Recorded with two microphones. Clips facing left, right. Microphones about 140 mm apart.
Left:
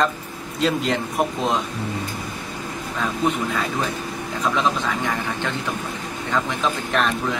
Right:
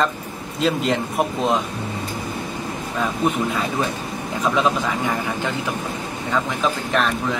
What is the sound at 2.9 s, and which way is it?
Speech, 5° right (ahead or behind).